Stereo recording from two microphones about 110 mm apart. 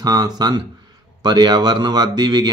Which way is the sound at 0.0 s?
40° right (ahead or behind).